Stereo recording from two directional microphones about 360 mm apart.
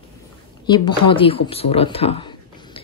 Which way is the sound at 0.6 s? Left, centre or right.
Centre.